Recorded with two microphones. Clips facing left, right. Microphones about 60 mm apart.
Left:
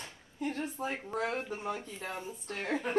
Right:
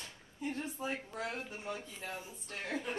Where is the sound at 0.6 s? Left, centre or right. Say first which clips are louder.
Left 3 dB; left.